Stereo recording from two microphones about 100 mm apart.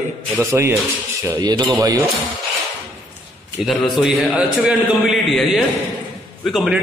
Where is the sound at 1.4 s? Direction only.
45° right (ahead or behind).